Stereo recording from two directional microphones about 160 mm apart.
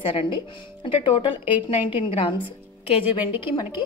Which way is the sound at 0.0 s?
35° left (ahead or behind).